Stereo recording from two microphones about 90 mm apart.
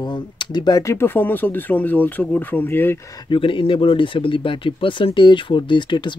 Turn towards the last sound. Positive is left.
turn(degrees=60)  # may be behind; listen again after turning